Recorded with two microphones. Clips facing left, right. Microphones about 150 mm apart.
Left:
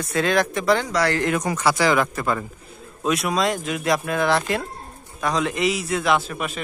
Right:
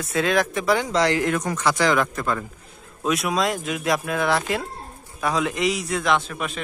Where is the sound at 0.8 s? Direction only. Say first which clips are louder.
Right 1 dB; 20° right (ahead or behind).